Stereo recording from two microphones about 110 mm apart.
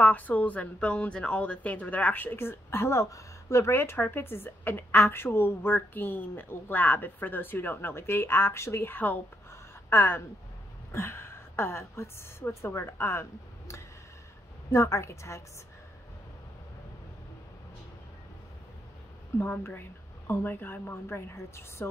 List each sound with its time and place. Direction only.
0.0 s a woman's voice: 15° left (ahead or behind)
19.3 s a woman's voice: 20° left (ahead or behind)